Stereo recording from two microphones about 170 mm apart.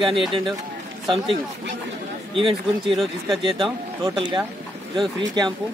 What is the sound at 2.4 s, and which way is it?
Speech, 30° right (ahead or behind).